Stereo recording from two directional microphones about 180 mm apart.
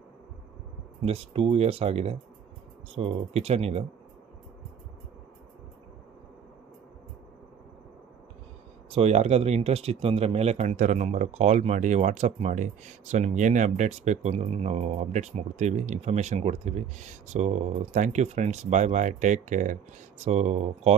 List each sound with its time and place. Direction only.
1.0 s speech: 30° right (ahead or behind)
8.9 s speech: 35° right (ahead or behind)